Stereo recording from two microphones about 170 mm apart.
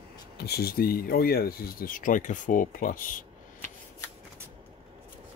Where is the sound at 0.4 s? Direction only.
65° left (ahead or behind).